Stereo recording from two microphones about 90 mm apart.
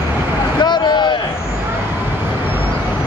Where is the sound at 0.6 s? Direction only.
55° left (ahead or behind).